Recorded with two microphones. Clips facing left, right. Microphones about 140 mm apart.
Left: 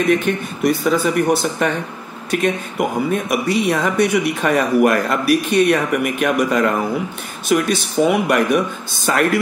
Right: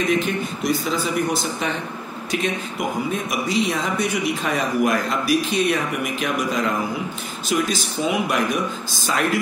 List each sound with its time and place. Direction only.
0.6 s speech: 55° left (ahead or behind)